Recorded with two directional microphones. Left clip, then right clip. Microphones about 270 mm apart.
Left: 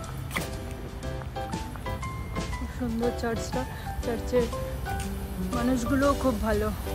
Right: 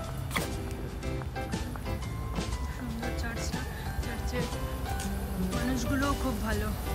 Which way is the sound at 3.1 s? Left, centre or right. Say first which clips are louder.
Left 7 dB; centre.